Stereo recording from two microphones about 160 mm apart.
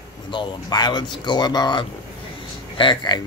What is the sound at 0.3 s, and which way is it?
Speech, 30° left (ahead or behind).